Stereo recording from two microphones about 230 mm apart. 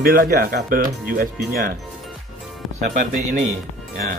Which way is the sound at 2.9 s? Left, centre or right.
Right.